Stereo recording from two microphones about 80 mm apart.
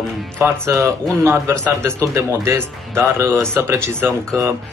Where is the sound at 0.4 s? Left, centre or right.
Right.